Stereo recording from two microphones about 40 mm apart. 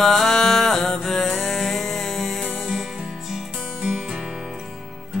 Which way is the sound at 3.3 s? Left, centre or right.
Centre.